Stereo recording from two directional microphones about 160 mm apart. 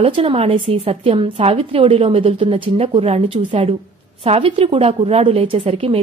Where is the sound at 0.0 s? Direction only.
35° right (ahead or behind).